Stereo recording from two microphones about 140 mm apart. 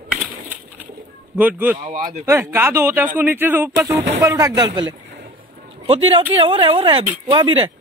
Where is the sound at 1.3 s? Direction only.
10° right (ahead or behind); by 4.9 s 30° right (ahead or behind).